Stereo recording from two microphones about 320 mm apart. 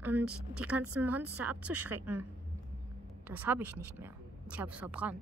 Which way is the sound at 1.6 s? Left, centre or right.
Right.